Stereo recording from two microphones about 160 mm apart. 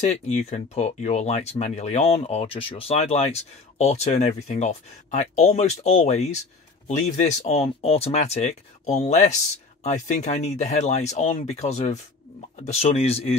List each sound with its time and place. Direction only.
0.0 s speech: 45° left (ahead or behind)